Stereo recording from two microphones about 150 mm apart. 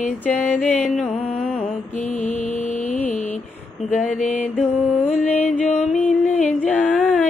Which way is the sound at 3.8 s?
50° left (ahead or behind).